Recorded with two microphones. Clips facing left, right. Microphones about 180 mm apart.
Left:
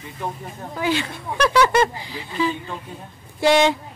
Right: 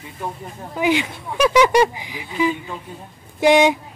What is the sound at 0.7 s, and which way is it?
Speech, 15° right (ahead or behind).